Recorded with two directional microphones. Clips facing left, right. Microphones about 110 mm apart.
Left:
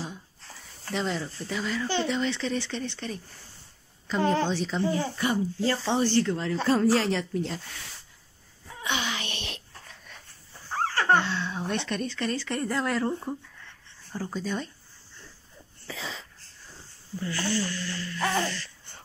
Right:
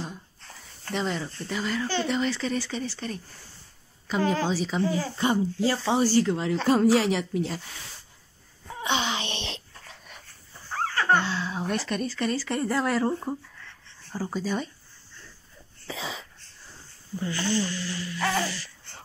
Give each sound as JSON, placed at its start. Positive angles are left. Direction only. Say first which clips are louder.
{"t": 0.0, "sound": "a sound", "louder": "even", "side_deg": 0}
{"t": 2.0, "sound": "speech", "louder": "right 1 dB", "side_deg": 0}
{"t": 4.5, "sound": "speech", "louder": "right 2 dB", "side_deg": -5}
{"t": 4.8, "sound": "speech", "louder": "left 3 dB", "side_deg": 25}
{"t": 5.1, "sound": "speech", "louder": "right 2 dB", "side_deg": -25}
{"t": 5.7, "sound": "speech", "louder": "right 2 dB", "side_deg": -10}
{"t": 8.8, "sound": "wail", "louder": "right 3 dB", "side_deg": -20}
{"t": 10.7, "sound": "a sound", "louder": "even", "side_deg": 35}
{"t": 11.1, "sound": "a sound", "louder": "even", "side_deg": 0}
{"t": 11.7, "sound": "speech", "louder": "right 1 dB", "side_deg": -5}
{"t": 15.9, "sound": "wheeze", "louder": "right 3 dB", "side_deg": -15}
{"t": 17.2, "sound": "speech", "louder": "right 2 dB", "side_deg": -20}